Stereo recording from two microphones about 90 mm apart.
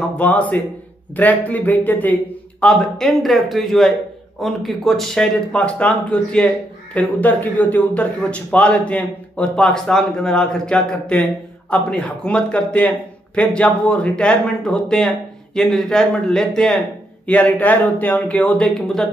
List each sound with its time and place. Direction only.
0.2 s speech: 15° left (ahead or behind)
2.6 s a man's voice: 5° left (ahead or behind)